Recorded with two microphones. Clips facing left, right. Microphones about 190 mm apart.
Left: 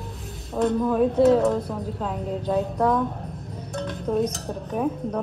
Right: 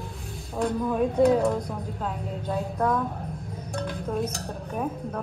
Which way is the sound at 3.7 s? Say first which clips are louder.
Left 4 dB; centre (ahead or behind).